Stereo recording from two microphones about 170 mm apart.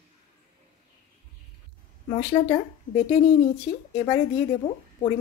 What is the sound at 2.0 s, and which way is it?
Speech, 30° left (ahead or behind).